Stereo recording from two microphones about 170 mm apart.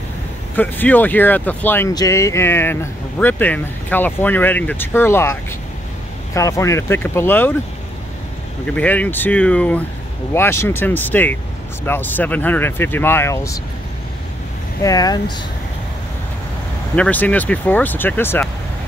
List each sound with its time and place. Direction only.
0.6 s speech: 10° left (ahead or behind)
8.6 s speech: 10° left (ahead or behind)
14.8 s speech: 20° left (ahead or behind)
16.9 s speech: 10° left (ahead or behind)